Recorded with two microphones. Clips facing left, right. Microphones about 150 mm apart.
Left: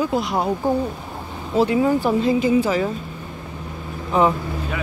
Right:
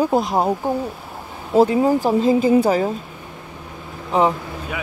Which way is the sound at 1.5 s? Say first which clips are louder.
Right 3 dB; 35° right (ahead or behind).